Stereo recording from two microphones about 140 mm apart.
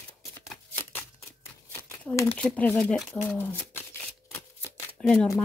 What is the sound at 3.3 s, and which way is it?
Speech, 15° left (ahead or behind).